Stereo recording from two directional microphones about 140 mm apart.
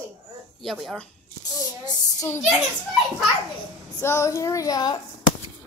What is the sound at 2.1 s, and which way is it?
Speech, 20° left (ahead or behind).